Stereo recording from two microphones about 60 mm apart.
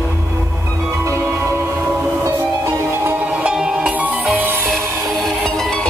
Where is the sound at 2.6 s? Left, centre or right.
Right.